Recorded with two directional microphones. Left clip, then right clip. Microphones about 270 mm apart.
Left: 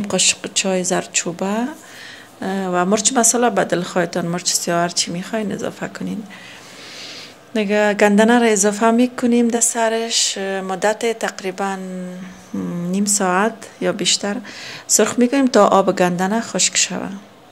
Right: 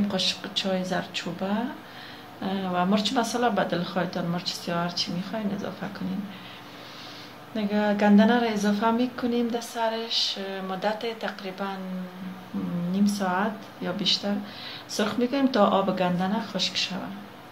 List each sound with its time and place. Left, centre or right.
0.1 s a woman's voice: left
7.5 s a woman's voice: left
12.9 s a woman's voice: left